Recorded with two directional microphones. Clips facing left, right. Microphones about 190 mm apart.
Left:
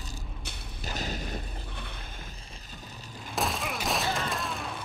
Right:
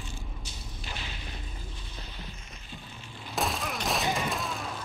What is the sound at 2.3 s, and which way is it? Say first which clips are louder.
Music: right 1 dB; 35° left (ahead or behind).